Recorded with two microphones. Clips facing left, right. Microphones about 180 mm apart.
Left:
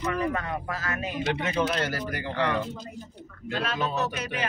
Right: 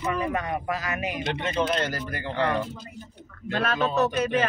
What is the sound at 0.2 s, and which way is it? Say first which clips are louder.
Speech: right 1 dB; 15° right (ahead or behind).